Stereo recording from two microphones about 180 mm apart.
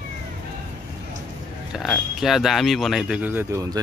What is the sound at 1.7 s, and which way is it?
Speech, centre (ahead or behind).